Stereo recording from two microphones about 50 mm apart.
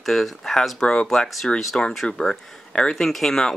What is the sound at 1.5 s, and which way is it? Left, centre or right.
Speech, centre.